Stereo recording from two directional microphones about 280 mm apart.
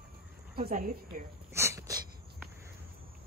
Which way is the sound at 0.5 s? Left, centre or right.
Right.